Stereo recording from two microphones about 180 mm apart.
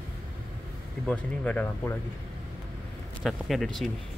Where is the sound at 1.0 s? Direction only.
5° left (ahead or behind).